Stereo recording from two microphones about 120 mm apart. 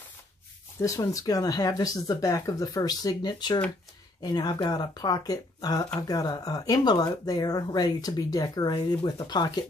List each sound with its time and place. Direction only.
0.7 s speech: 25° left (ahead or behind)